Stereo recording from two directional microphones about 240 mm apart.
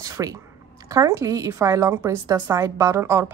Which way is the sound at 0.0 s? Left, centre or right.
Centre.